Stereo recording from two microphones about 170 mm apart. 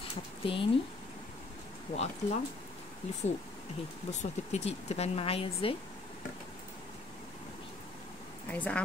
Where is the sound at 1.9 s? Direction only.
30° left (ahead or behind).